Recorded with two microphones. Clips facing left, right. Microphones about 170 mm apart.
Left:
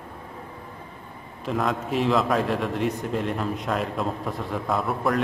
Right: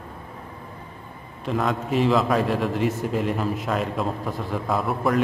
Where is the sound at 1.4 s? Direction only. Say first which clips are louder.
Right 1 dB; centre (ahead or behind).